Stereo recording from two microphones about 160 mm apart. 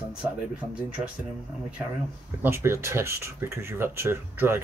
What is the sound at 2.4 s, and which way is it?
Speech, 15° right (ahead or behind).